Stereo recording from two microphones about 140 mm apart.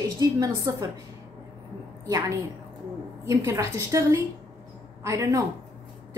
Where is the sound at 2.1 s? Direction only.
30° right (ahead or behind).